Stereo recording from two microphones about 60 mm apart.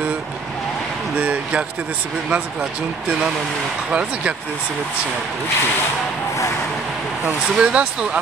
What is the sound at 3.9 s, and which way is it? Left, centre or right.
Speech, centre.